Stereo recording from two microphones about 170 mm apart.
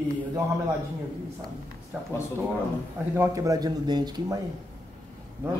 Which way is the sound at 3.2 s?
20° right (ahead or behind).